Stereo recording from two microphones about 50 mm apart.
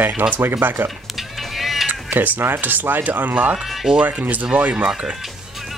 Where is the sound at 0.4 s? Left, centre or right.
Right.